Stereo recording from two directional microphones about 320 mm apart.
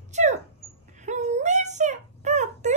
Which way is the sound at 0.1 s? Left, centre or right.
Right.